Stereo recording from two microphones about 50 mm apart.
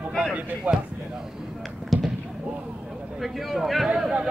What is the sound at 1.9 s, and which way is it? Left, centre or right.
Basketball bounce, centre.